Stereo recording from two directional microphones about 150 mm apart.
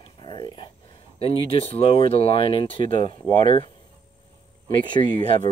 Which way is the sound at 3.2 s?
55° right (ahead or behind).